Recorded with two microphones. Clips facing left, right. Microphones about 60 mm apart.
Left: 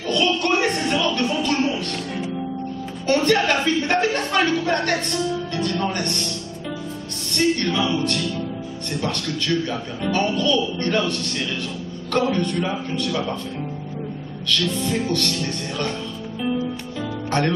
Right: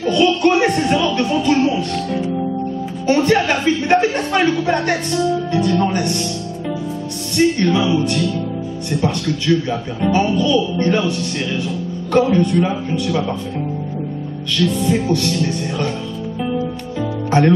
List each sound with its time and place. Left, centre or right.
0.1 s music: centre
3.1 s speech: centre
7.3 s speech: centre
14.5 s speech: centre
17.3 s speech: centre